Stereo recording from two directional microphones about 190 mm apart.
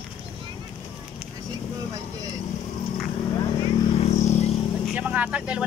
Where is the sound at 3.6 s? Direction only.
35° left (ahead or behind).